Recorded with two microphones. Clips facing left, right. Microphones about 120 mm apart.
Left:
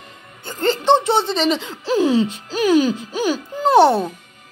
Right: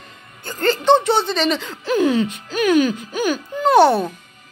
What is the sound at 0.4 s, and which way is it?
A woman's voice, 20° left (ahead or behind).